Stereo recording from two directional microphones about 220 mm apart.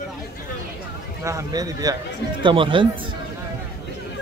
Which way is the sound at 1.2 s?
15° right (ahead or behind).